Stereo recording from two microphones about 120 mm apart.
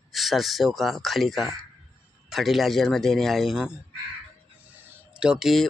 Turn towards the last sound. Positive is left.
turn(degrees=0)  # may be behind; listen again after turning